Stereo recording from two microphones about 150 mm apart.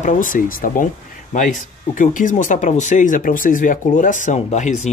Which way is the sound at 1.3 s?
55° left (ahead or behind).